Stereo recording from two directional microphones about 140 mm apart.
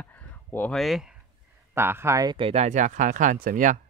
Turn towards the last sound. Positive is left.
turn(degrees=-75)  # may be behind; listen again after turning